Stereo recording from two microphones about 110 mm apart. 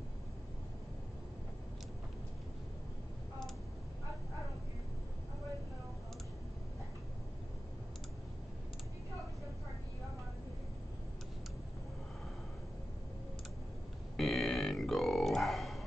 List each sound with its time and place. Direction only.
14.1 s grunt: centre (ahead or behind)